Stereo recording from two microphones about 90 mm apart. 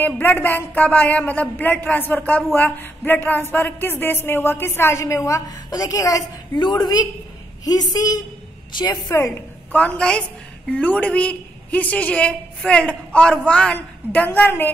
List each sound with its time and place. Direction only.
0.0 s a woman's voice: 20° left (ahead or behind); by 6.2 s 40° left (ahead or behind)
6.5 s a woman's voice: 55° left (ahead or behind)
9.7 s a woman's voice: 15° left (ahead or behind)